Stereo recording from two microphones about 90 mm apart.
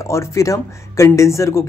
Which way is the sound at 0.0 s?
35° left (ahead or behind).